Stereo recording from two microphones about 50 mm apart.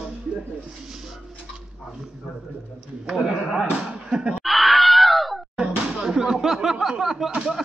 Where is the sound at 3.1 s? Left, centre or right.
Centre.